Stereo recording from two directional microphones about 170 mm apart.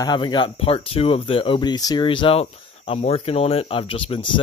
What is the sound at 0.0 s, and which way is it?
Speech, 25° left (ahead or behind).